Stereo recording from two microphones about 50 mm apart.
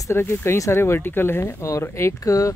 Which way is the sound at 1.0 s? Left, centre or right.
Left.